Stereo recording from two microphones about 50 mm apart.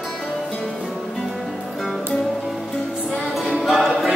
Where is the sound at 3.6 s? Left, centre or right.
Centre.